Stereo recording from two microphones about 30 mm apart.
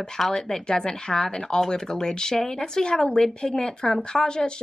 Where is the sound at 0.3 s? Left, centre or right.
Left.